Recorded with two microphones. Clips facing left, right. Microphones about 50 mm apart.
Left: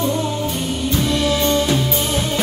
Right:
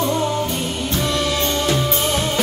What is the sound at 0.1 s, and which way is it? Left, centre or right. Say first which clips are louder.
Music: right 1 dB; right.